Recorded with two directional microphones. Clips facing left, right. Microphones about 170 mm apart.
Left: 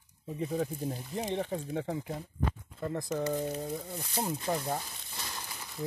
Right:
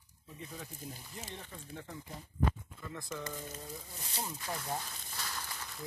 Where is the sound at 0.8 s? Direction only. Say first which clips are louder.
Left 12 dB; 80° left.